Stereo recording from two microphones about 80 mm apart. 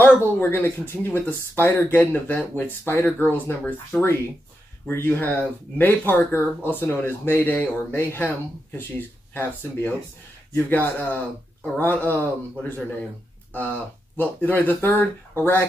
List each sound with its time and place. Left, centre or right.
0.0 s speech: left